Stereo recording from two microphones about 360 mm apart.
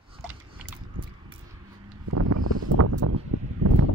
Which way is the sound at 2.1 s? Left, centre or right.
Right.